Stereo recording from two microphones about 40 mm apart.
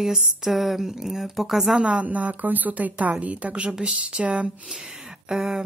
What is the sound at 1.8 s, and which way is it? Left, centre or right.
A woman's voice, right.